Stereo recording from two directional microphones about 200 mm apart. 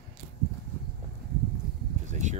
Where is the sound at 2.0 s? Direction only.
35° right (ahead or behind).